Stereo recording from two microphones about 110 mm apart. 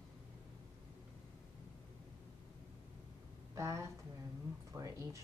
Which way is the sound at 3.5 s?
25° right (ahead or behind).